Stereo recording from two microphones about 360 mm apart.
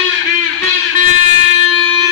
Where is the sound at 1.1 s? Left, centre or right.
Left.